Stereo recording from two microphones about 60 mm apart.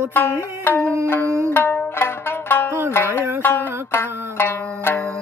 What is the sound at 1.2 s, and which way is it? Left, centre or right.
Music, right.